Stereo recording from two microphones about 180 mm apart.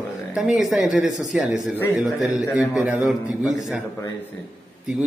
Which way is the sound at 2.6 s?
10° right (ahead or behind).